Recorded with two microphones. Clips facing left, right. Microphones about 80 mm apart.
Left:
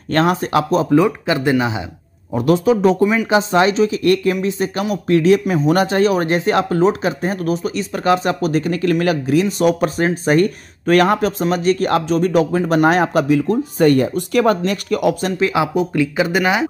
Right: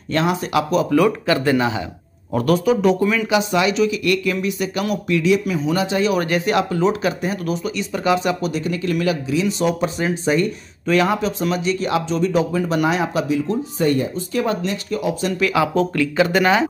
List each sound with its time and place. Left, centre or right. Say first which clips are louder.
0.1 s speech: left 3 dB; left
0.8 s a man's voice: left 2 dB; left
3.0 s a man's voice: left 3 dB; left
3.3 s speech: left 4 dB; left
6.1 s speech: left 2 dB; left
15.3 s speech: left 1 dB; left